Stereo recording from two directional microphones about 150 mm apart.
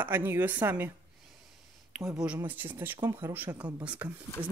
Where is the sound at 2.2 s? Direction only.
10° right (ahead or behind).